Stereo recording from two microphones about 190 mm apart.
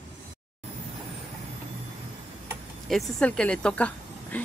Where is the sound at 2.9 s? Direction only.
Centre (ahead or behind).